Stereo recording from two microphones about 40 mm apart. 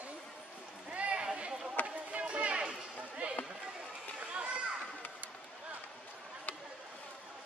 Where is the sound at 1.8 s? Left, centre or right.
Right.